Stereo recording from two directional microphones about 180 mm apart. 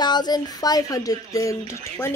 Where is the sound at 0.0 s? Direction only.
25° left (ahead or behind).